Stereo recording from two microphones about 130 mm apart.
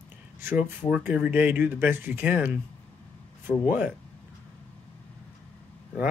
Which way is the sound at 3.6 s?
15° right (ahead or behind).